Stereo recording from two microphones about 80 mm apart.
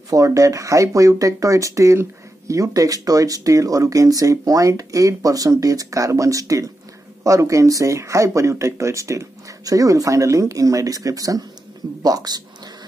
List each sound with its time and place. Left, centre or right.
0.1 s speech: right